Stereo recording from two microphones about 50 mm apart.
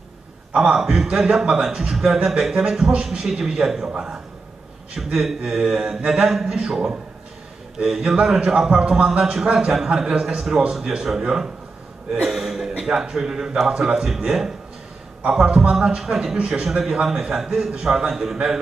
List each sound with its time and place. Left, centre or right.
0.5 s a man's voice: centre
15.3 s speech: centre